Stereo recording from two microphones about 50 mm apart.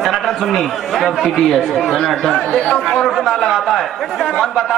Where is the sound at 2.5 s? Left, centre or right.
Left.